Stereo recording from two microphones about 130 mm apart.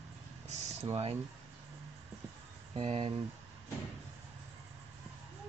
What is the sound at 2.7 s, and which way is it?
Speech, 50° right (ahead or behind).